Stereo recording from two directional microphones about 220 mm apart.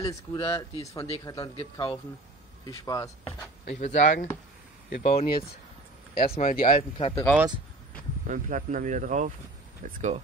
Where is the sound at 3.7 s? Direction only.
35° left (ahead or behind).